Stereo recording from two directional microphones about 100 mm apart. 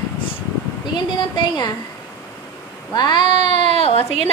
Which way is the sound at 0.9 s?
45° left (ahead or behind).